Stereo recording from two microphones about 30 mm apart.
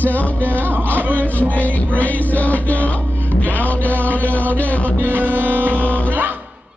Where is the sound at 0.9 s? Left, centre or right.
Right.